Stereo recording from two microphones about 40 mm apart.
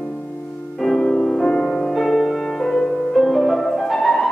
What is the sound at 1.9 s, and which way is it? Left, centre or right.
Music, centre.